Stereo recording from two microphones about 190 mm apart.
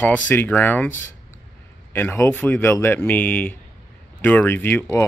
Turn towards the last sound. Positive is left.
turn(degrees=10)  # may be behind; listen again after turning